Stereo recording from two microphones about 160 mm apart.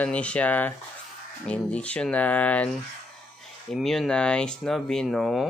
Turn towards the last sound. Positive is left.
turn(degrees=0)  # may be behind; listen again after turning